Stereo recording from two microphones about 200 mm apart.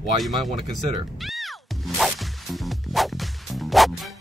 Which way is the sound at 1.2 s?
Centre (ahead or behind).